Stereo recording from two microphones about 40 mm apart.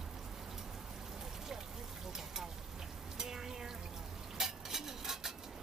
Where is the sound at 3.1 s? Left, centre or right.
Centre.